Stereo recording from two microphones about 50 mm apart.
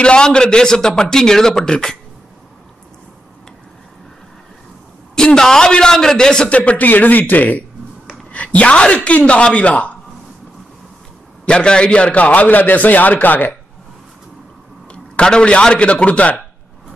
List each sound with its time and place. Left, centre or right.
0.0 s a man's voice: centre
5.1 s a man's voice: centre
6.5 s a man's voice: left
11.4 s a man's voice: centre; by 13.5 s left
14.9 s a man's voice: centre